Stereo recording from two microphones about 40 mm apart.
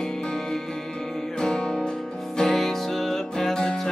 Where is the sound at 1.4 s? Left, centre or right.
Centre.